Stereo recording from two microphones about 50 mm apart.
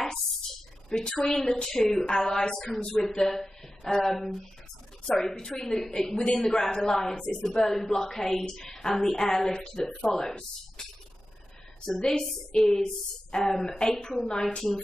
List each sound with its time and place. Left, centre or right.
0.8 s a woman's voice: centre
11.8 s a woman's voice: centre